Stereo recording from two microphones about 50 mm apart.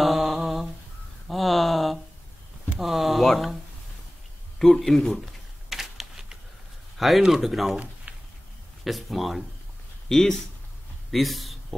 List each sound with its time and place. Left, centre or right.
0.0 s a sound: centre
4.6 s speech: centre
5.7 s typing: centre
7.0 s speech: centre
8.1 s a sound: right
8.8 s speech: centre
10.0 s speech: centre
11.1 s speech: centre